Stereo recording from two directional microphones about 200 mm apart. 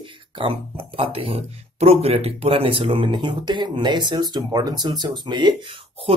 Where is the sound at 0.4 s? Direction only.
25° right (ahead or behind).